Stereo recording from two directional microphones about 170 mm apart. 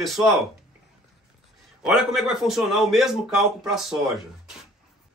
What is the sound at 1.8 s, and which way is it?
A man's voice, 5° right (ahead or behind).